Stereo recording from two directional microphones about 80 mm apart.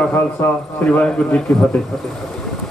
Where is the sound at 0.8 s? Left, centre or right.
Centre.